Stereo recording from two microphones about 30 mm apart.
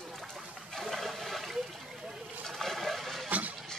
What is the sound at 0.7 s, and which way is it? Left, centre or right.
Water, centre.